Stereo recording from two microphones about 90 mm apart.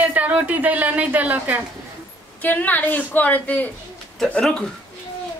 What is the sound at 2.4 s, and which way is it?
A woman's voice, 20° left (ahead or behind).